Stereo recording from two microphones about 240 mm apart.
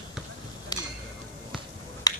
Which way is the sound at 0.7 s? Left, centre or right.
Centre.